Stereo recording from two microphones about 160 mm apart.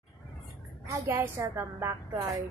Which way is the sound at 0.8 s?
15° right (ahead or behind).